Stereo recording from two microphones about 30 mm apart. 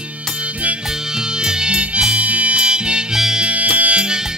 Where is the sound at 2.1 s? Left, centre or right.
Right.